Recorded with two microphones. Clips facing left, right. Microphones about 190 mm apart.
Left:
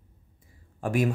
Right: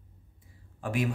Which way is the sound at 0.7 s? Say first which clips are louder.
Left 5 dB; 45° left (ahead or behind).